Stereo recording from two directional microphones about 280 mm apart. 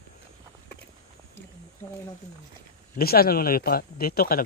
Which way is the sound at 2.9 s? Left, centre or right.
Left.